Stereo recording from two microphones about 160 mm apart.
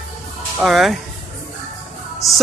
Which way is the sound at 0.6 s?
Centre (ahead or behind).